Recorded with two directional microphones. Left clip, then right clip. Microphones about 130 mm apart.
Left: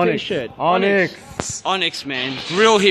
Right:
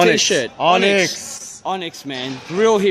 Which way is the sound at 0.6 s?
20° right (ahead or behind).